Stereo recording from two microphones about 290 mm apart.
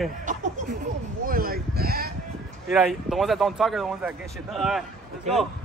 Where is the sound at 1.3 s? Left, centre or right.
Right.